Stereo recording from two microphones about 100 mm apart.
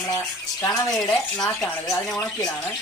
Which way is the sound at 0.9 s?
5° left (ahead or behind).